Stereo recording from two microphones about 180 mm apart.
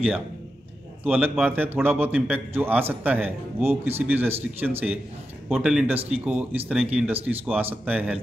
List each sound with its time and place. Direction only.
1.0 s a man's voice: 10° right (ahead or behind)